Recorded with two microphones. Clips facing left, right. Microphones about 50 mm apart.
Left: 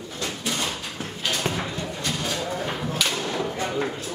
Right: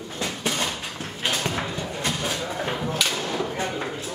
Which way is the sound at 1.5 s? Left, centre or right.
Centre.